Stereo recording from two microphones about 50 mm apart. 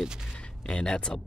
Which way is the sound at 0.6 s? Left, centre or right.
Left.